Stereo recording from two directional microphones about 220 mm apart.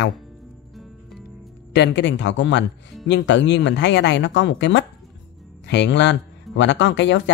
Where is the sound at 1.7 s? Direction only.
50° left (ahead or behind).